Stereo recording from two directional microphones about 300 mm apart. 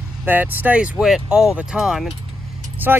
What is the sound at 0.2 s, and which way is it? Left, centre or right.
Speech, centre.